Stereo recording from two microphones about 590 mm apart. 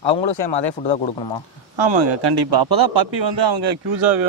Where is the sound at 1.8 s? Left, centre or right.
Right.